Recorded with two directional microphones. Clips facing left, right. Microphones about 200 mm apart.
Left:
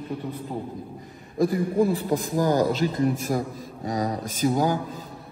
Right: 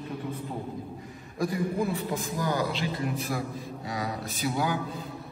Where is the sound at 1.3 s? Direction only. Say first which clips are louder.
Left 7 dB; 30° left (ahead or behind).